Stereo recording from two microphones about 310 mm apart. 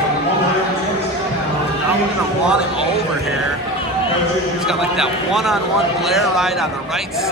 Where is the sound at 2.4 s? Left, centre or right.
Centre.